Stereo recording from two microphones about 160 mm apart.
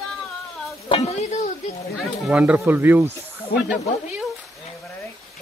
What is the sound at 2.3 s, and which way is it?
Speech, 10° right (ahead or behind).